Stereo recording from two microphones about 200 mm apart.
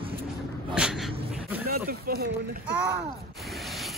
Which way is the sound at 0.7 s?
5° right (ahead or behind).